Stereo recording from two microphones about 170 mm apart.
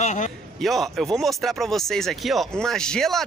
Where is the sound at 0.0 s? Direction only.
45° left (ahead or behind).